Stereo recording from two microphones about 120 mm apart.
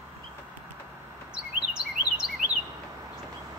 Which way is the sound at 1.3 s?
5° right (ahead or behind).